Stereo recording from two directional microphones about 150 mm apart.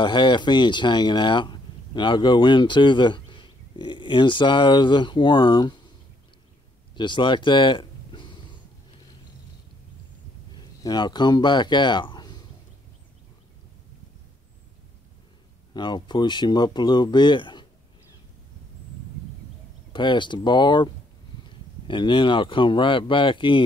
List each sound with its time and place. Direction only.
0.0 s speech: 30° left (ahead or behind)
7.0 s a sound: 30° left (ahead or behind)
10.5 s speech: 30° left (ahead or behind)
15.7 s speech: 30° left (ahead or behind)
19.9 s speech: 30° left (ahead or behind)